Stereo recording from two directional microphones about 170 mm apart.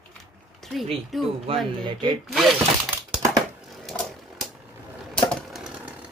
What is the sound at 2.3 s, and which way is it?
Speech, centre (ahead or behind).